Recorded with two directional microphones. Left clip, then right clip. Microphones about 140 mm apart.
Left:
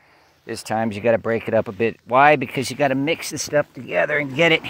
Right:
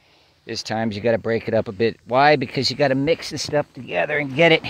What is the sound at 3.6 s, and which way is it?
Speech, 25° right (ahead or behind).